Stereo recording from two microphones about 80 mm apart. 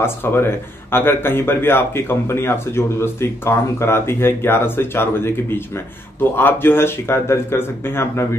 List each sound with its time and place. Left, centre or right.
0.0 s speech: left